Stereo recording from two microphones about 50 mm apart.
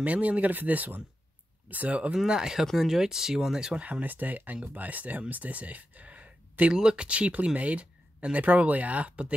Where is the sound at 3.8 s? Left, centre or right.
Right.